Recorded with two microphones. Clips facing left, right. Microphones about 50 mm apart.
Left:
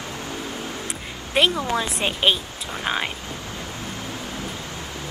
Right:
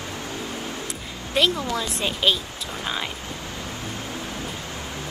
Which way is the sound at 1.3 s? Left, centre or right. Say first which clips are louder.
Left 2 dB; left.